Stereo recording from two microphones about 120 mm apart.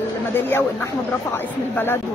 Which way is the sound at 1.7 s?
20° left (ahead or behind).